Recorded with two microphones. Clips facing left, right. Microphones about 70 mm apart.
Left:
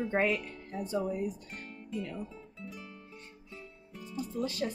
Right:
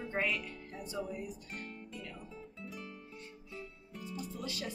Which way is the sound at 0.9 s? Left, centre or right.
Left.